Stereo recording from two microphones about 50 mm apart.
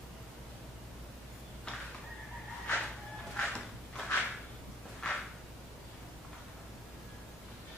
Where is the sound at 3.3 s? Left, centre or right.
Left.